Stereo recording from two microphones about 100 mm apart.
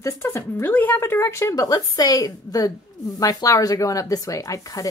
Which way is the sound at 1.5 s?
40° left (ahead or behind).